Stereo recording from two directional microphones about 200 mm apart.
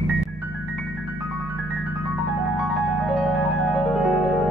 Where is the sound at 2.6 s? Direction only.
Centre (ahead or behind).